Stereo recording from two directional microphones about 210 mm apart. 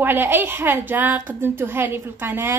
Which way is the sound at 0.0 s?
10° right (ahead or behind).